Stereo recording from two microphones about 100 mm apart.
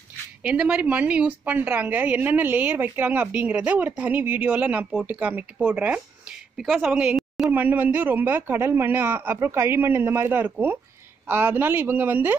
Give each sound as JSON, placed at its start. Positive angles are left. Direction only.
{"t": 0.4, "sound": "a woman's voice", "side_deg": -15}
{"t": 7.2, "sound": "a sound", "side_deg": 0}
{"t": 7.5, "sound": "a man's voice", "side_deg": -20}